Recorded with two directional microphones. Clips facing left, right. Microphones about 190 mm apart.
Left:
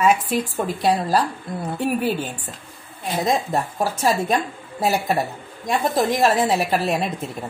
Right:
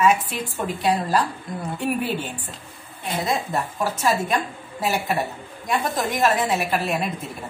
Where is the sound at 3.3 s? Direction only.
40° left (ahead or behind).